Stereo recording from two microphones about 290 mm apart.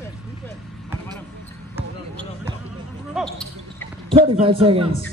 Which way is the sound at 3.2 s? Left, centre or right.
Centre.